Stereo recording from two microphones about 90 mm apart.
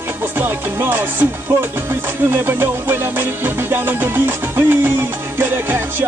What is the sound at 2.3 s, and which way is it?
Music, 25° right (ahead or behind).